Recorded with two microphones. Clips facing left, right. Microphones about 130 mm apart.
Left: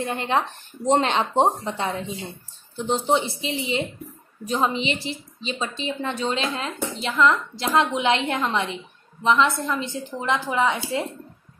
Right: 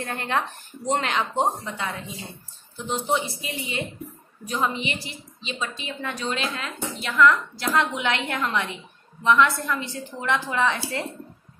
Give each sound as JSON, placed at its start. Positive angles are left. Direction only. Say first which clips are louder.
{"t": 0.0, "sound": "a woman's voice", "louder": "left 3 dB", "side_deg": 20}